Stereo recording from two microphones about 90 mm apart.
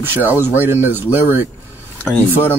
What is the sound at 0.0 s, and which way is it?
Speech, 20° right (ahead or behind).